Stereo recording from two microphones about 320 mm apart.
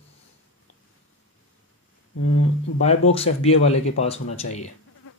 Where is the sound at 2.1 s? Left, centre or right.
Left.